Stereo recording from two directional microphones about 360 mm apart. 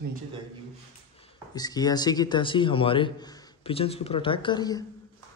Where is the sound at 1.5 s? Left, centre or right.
Centre.